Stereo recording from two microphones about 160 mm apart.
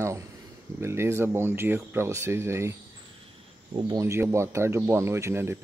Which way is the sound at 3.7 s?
20° right (ahead or behind).